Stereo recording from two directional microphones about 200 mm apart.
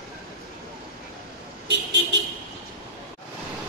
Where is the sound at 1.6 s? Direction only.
60° right (ahead or behind).